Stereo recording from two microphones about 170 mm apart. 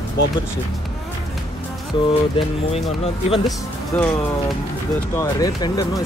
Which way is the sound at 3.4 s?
Centre (ahead or behind).